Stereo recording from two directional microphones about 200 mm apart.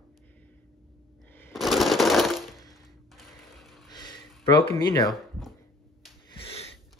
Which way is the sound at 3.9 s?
20° left (ahead or behind).